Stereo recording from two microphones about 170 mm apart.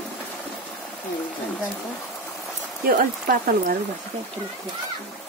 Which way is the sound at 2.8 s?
55° right (ahead or behind).